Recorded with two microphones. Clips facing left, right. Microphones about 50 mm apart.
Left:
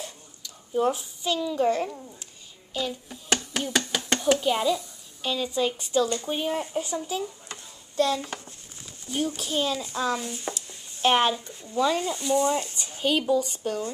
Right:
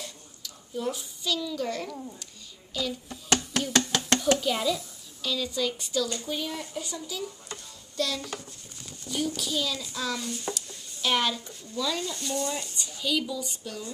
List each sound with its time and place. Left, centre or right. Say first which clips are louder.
0.7 s speech: left 7 dB; left
3.1 s chopping: even; centre
4.4 s speech: left 3 dB; centre
5.2 s speech: left 3 dB; left
12.1 s speech: left 7 dB; centre
12.4 s speech: left 7 dB; left